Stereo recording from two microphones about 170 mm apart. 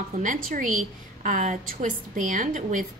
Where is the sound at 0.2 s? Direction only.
50° right (ahead or behind).